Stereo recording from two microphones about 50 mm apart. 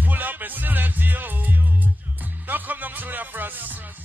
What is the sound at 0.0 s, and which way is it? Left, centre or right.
Music, right.